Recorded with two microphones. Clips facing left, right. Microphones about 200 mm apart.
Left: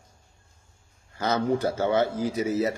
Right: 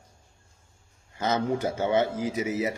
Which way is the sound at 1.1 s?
20° right (ahead or behind).